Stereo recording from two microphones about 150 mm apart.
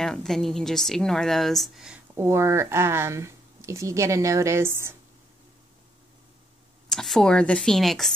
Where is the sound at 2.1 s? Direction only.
20° right (ahead or behind).